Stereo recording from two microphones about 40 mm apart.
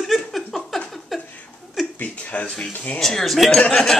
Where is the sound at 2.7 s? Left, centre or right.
Left.